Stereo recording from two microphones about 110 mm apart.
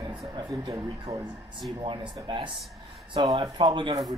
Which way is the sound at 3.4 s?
45° right (ahead or behind).